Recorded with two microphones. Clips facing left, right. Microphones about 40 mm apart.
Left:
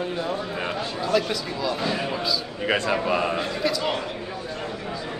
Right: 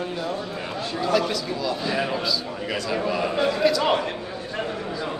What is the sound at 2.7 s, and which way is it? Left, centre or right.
Speech, left.